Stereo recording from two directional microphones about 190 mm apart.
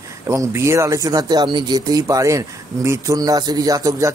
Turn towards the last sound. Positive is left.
turn(degrees=-15)  # may be behind; listen again after turning